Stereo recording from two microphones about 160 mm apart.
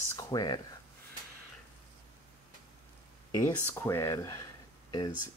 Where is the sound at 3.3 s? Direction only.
20° left (ahead or behind).